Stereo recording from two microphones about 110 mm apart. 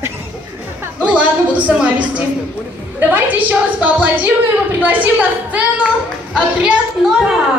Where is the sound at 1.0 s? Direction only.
10° right (ahead or behind).